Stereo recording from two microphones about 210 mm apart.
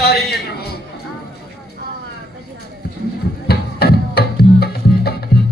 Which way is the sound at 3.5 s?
50° left (ahead or behind).